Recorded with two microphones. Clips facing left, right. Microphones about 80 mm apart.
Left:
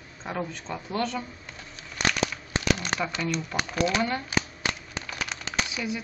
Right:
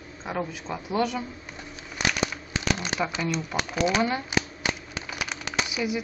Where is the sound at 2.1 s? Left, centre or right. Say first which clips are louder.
Left 2 dB; centre.